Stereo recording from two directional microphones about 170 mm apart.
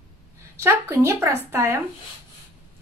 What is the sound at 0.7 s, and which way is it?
Speech, 15° right (ahead or behind).